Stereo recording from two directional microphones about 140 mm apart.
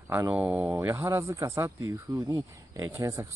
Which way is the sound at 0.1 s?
15° right (ahead or behind).